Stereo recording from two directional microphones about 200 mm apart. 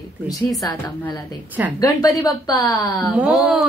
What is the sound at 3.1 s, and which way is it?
Speech, 5° right (ahead or behind).